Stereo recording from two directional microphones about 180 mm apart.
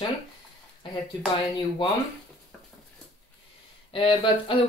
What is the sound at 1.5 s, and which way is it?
Speech, 25° left (ahead or behind).